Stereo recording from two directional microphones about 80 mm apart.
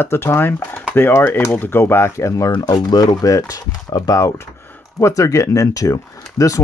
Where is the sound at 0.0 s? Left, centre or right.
Left.